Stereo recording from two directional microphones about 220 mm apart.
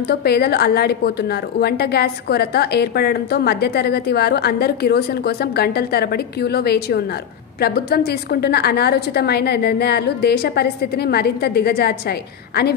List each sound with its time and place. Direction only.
0.1 s a woman's voice: 45° left (ahead or behind)